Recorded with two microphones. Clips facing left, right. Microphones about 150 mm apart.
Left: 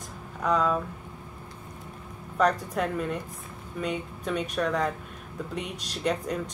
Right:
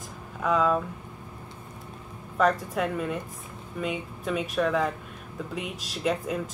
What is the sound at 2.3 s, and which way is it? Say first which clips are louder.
Speech: right 1 dB; centre (ahead or behind).